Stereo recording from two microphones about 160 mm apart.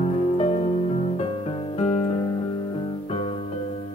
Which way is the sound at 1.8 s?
40° left (ahead or behind).